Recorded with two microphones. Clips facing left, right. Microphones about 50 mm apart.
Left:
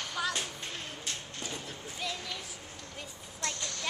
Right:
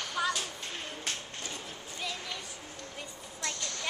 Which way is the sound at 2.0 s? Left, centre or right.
Centre.